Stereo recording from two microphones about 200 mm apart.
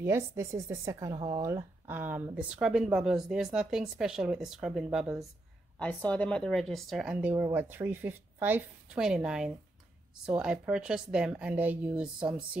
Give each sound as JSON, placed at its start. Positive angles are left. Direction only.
{"t": 0.0, "sound": "a woman's voice", "side_deg": -15}
{"t": 1.5, "sound": "speech", "side_deg": -10}
{"t": 5.8, "sound": "a woman's voice", "side_deg": 5}